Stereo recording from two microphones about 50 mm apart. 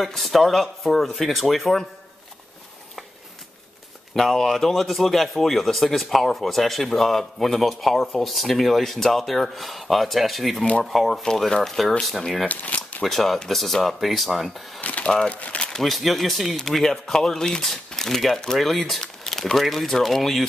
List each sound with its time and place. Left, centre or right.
0.0 s a man's voice: centre
4.1 s a man's voice: centre
12.4 s speech: left
13.0 s a man's voice: centre
14.8 s speech: left
15.7 s a man's voice: centre